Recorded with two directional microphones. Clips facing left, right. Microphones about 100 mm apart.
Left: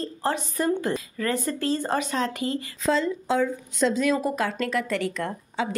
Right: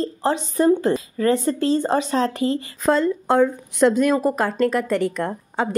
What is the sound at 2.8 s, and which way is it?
Speech, 50° right (ahead or behind).